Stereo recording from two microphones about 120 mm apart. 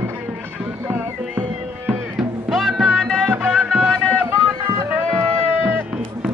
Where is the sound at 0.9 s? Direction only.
15° right (ahead or behind).